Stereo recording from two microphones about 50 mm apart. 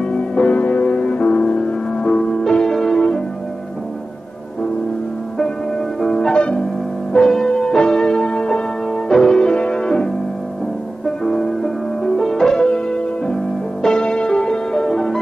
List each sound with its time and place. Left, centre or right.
0.4 s music: left; by 3.2 s centre
5.9 s music: centre
11.2 s music: centre